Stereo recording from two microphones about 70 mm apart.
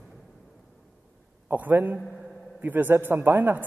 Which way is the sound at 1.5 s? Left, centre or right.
Right.